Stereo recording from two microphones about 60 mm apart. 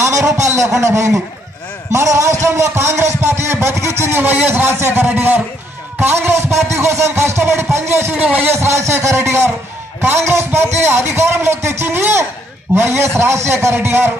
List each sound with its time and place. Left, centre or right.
0.4 s a sound: right
0.7 s a man's voice: right
1.9 s a sound: right
4.2 s a man's voice: right
8.1 s a man's voice: right
8.4 s a man's voice: right